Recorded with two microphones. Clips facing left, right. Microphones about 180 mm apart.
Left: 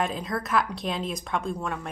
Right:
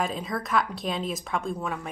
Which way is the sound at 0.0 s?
Centre (ahead or behind).